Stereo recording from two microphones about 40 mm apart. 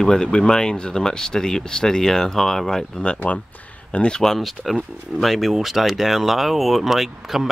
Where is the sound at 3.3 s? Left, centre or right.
Left.